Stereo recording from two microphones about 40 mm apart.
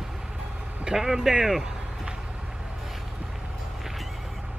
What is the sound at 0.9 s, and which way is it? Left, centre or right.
Speech, centre.